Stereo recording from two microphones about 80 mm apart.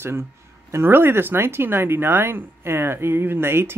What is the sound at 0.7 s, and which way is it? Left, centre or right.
Speech, right.